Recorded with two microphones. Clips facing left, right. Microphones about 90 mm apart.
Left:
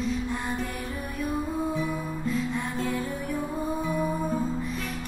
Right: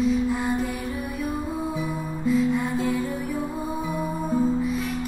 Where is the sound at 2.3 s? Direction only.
Centre (ahead or behind).